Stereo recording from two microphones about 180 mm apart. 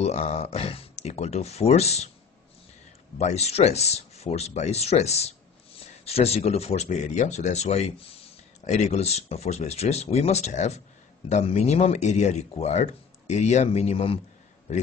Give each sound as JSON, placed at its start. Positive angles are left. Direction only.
{"t": 0.0, "sound": "speech", "side_deg": 35}
{"t": 3.2, "sound": "speech", "side_deg": 35}